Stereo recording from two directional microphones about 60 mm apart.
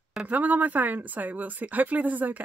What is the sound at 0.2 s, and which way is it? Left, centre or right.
Speech, right.